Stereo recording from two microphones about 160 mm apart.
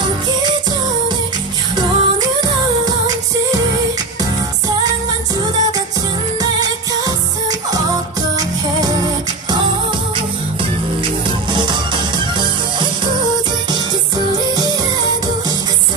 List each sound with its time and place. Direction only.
1.8 s music: 25° right (ahead or behind)
11.5 s music: 30° right (ahead or behind)